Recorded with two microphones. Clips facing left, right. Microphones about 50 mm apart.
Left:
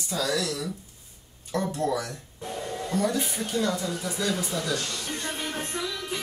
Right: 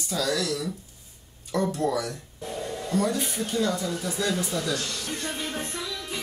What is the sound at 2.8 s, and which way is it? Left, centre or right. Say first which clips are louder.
Speech: right 1 dB; left.